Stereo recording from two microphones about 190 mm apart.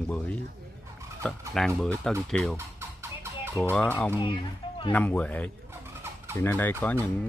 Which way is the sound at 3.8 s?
10° left (ahead or behind).